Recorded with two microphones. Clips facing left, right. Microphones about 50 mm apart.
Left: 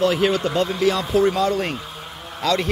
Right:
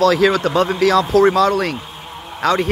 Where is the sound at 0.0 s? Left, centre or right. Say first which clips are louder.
Right 5 dB; right.